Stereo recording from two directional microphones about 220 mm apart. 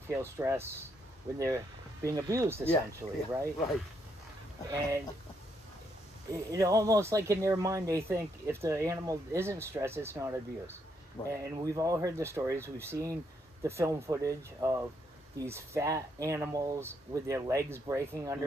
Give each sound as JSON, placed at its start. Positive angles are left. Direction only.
{"t": 0.1, "sound": "speech", "side_deg": -15}
{"t": 2.0, "sound": "speech", "side_deg": -15}
{"t": 4.6, "sound": "speech", "side_deg": -15}
{"t": 6.3, "sound": "speech", "side_deg": -15}